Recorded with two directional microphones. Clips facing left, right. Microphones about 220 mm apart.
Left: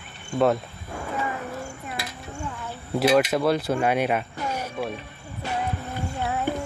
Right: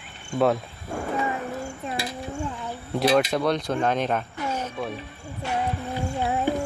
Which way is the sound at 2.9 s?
5° left (ahead or behind).